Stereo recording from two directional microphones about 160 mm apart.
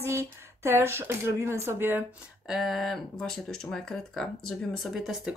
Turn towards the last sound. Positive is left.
turn(degrees=-5)  # may be behind; listen again after turning